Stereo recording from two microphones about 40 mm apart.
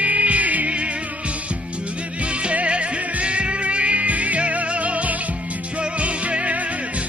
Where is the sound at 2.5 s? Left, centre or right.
Right.